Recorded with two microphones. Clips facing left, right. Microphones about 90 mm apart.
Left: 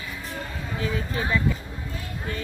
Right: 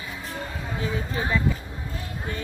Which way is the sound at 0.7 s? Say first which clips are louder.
Left 1 dB; 25° right (ahead or behind).